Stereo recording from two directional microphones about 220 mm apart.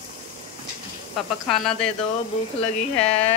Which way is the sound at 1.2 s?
Centre (ahead or behind).